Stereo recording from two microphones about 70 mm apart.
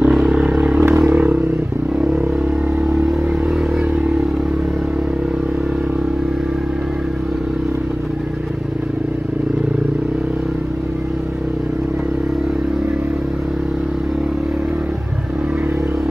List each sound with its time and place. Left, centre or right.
0.0 s vehicle: centre
0.7 s vehicle: right
1.0 s vehicle: right